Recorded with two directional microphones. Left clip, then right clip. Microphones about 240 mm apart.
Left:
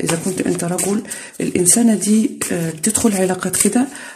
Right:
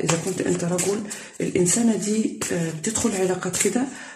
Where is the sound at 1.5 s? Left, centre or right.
Left.